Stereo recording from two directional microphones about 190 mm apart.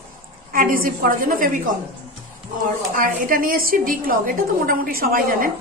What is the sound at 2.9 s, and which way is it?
A woman's voice, 45° right (ahead or behind).